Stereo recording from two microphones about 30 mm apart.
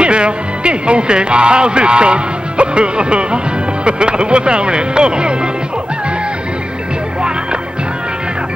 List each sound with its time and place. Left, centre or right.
0.0 s speech: right